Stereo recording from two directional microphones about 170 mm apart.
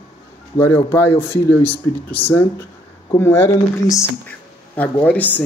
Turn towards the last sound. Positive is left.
turn(degrees=10)  # may be behind; listen again after turning